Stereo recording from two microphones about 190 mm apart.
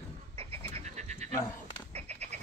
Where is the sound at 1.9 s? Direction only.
35° right (ahead or behind).